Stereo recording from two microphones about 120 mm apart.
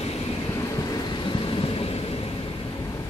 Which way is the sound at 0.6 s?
30° left (ahead or behind).